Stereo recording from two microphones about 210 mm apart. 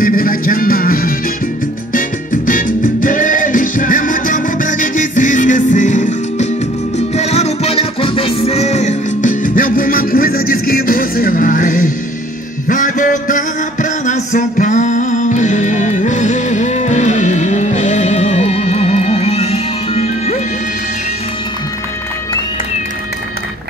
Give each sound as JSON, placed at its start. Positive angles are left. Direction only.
{"t": 0.0, "sound": "music", "side_deg": 40}